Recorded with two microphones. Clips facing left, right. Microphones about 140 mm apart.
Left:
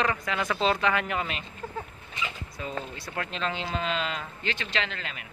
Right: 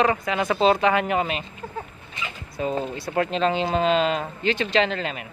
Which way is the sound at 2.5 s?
30° right (ahead or behind).